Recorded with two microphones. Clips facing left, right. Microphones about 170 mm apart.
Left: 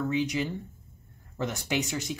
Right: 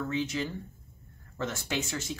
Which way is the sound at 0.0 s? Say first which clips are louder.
Left 3 dB; 15° left (ahead or behind).